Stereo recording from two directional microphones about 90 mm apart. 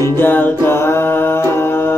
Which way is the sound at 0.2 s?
20° left (ahead or behind).